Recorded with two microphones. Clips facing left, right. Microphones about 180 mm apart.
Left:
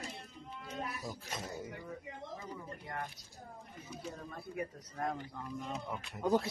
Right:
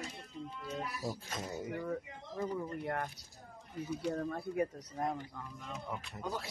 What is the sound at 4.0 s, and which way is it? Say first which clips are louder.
Speech: right 8 dB; 70° right (ahead or behind).